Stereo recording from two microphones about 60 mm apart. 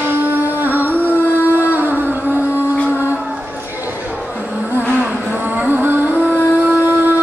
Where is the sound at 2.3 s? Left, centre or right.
Left.